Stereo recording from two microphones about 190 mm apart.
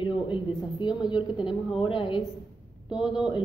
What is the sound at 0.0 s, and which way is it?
A woman's voice, 25° left (ahead or behind).